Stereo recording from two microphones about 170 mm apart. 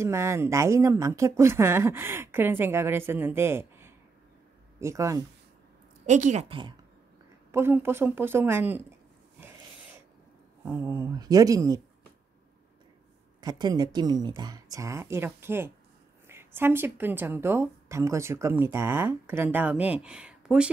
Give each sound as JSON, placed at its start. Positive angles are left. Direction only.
{"t": 0.0, "sound": "a woman's voice", "side_deg": -15}
{"t": 6.0, "sound": "speech", "side_deg": -45}
{"t": 7.5, "sound": "speech", "side_deg": -15}
{"t": 10.8, "sound": "a woman's voice", "side_deg": -20}
{"t": 13.4, "sound": "a woman's voice", "side_deg": -25}